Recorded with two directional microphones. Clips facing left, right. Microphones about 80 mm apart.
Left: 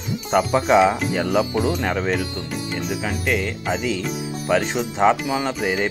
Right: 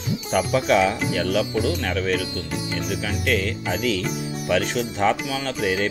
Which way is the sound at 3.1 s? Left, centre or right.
Centre.